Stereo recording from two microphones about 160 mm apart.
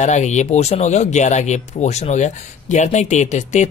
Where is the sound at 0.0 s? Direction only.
45° left (ahead or behind).